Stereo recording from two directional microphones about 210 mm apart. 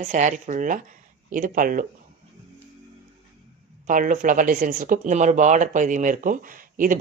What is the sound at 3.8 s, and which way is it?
Speech, 40° right (ahead or behind).